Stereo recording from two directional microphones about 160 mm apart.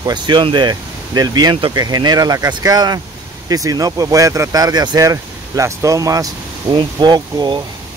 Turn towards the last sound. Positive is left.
turn(degrees=-25)  # may be behind; listen again after turning